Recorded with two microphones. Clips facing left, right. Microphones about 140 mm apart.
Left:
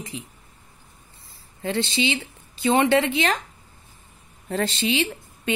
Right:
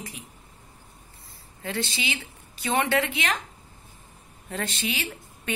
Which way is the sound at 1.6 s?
25° left (ahead or behind).